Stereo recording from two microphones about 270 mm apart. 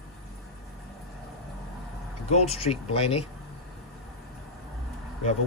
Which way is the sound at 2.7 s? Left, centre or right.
Left.